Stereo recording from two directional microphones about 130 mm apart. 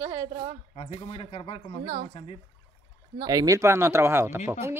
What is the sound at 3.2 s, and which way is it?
Speech, 30° right (ahead or behind).